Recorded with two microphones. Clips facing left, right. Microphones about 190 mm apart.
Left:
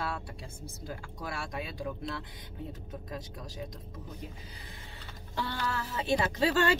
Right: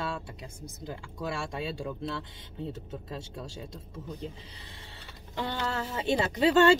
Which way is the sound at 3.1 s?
25° right (ahead or behind).